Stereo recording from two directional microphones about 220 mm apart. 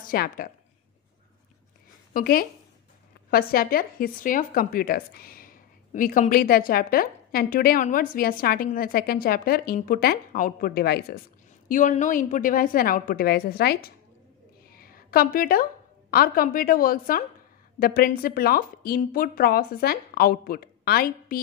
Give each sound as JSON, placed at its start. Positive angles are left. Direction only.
{"t": 0.0, "sound": "a woman's voice", "side_deg": 40}
{"t": 2.1, "sound": "speech", "side_deg": 40}
{"t": 11.7, "sound": "a woman's voice", "side_deg": 35}